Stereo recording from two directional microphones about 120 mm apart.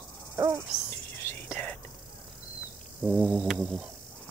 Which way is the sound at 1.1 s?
20° left (ahead or behind).